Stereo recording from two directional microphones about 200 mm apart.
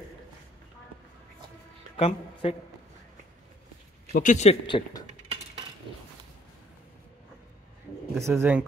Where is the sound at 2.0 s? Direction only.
30° left (ahead or behind).